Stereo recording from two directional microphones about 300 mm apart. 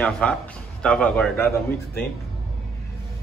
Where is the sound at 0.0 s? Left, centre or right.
Centre.